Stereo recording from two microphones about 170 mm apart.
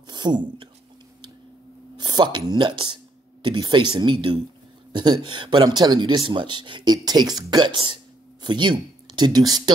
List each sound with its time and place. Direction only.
0.1 s speech: 25° right (ahead or behind)
2.0 s a man's voice: 25° right (ahead or behind)